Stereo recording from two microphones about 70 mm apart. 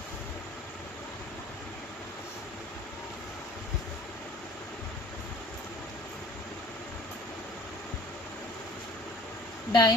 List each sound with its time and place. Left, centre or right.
9.7 s speech: left